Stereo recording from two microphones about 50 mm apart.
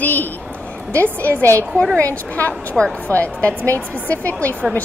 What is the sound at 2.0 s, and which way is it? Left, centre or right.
A woman's voice, left.